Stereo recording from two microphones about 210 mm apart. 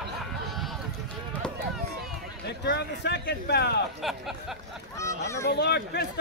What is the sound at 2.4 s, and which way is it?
A man's voice, 55° left (ahead or behind).